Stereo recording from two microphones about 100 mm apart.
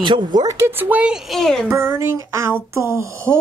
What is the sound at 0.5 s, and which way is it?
Speech, 20° right (ahead or behind).